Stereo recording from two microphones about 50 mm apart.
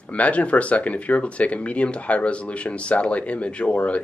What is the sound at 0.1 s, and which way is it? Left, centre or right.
Speech, left.